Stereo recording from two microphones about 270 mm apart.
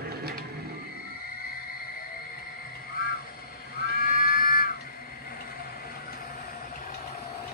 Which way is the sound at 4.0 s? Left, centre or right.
Left.